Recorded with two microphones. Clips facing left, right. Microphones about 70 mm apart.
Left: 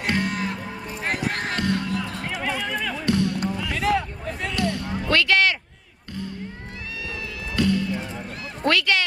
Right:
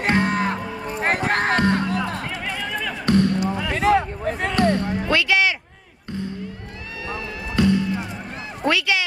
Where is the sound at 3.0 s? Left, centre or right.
Right.